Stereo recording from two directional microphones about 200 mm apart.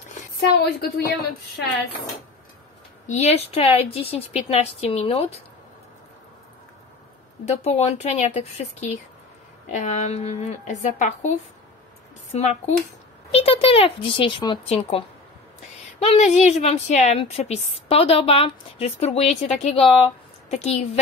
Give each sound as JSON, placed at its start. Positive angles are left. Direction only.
{"t": 0.4, "sound": "a woman's voice", "side_deg": 55}
{"t": 3.1, "sound": "a woman's voice", "side_deg": 35}
{"t": 7.4, "sound": "a woman's voice", "side_deg": 35}
{"t": 12.4, "sound": "a woman's voice", "side_deg": 35}